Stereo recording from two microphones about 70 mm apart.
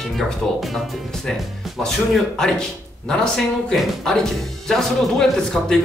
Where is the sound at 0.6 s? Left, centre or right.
Centre.